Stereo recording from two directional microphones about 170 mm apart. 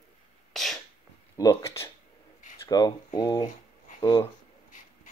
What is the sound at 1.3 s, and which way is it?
Speech, 20° left (ahead or behind).